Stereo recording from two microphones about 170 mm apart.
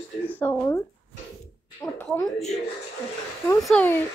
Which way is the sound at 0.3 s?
10° left (ahead or behind).